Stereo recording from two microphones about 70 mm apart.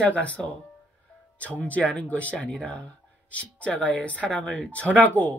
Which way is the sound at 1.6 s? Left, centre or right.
Centre.